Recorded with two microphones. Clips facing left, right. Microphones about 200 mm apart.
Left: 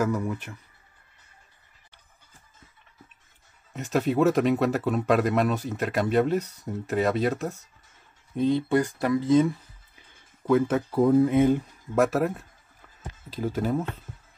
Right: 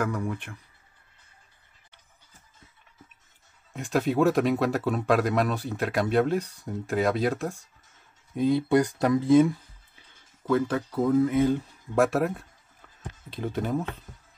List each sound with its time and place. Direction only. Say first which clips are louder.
0.0 s speech: left 3 dB; 5° left (ahead or behind)
3.7 s speech: left 1 dB; centre (ahead or behind)
10.4 s speech: left 3 dB; 20° left (ahead or behind)
11.9 s speech: even; centre (ahead or behind)